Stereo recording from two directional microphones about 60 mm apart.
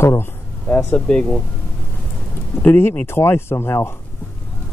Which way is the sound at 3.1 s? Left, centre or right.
Left.